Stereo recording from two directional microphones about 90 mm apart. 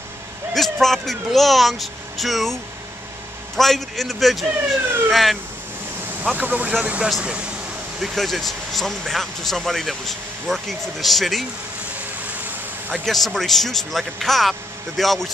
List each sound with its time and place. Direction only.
0.6 s speech: 5° left (ahead or behind)
6.2 s speech: 15° right (ahead or behind)
8.0 s speech: centre (ahead or behind)
13.0 s speech: 5° left (ahead or behind)